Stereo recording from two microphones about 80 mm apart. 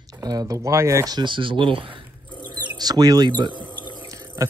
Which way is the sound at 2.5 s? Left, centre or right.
Right.